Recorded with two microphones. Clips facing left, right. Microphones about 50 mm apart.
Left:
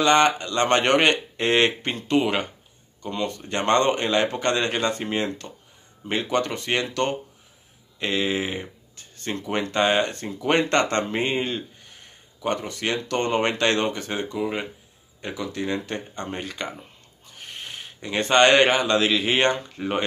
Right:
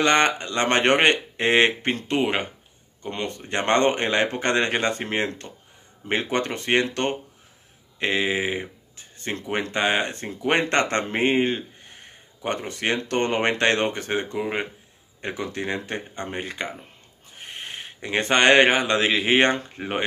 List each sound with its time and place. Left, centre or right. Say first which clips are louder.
0.0 s speech: left 1 dB; right
3.1 s speech: left 1 dB; right